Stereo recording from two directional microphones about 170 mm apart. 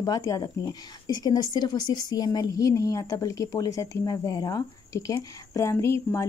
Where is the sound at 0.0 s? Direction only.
20° left (ahead or behind).